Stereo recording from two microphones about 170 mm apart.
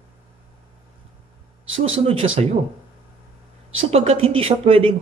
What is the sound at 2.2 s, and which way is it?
Speech, 35° right (ahead or behind).